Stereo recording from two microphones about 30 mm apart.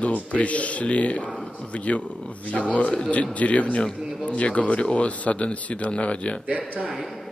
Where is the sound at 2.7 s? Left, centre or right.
Left.